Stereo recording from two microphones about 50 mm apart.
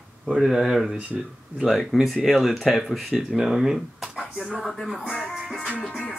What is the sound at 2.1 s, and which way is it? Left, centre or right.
Speech, centre.